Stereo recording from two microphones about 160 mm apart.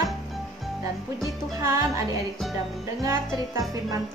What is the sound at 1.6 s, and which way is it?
Speech, 15° right (ahead or behind).